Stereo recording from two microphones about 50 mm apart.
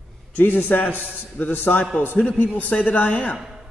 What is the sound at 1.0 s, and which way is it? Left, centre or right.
Speech, right.